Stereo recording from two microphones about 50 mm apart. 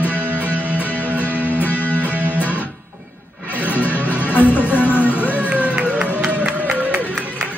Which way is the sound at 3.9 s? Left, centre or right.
Left.